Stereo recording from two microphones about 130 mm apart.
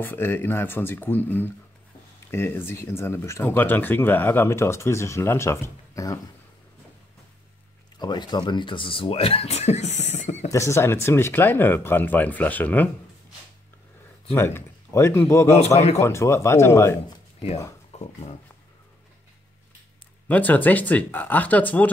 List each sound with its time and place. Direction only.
0.0 s speech: 15° left (ahead or behind)
8.0 s speech: 35° left (ahead or behind); by 10.5 s 60° left (ahead or behind)
10.5 s speech: 20° left (ahead or behind)
14.3 s speech: 20° left (ahead or behind)
15.6 s a man's voice: 55° left (ahead or behind)
16.0 s speech: 20° left (ahead or behind)
17.9 s dog: 55° left (ahead or behind)
20.2 s speech: 15° left (ahead or behind)